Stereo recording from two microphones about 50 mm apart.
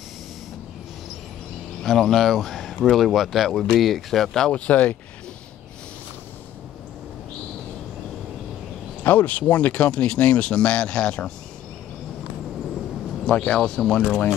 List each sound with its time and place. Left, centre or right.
1.8 s speech: centre
4.5 s speech: left
9.0 s speech: left
13.3 s speech: left
13.7 s speech: centre
14.0 s speech: left